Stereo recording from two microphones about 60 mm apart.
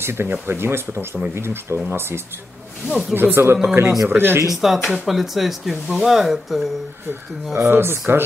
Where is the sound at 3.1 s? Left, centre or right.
Right.